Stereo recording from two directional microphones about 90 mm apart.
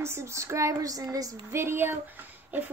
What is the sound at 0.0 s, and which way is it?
Speech, 30° right (ahead or behind).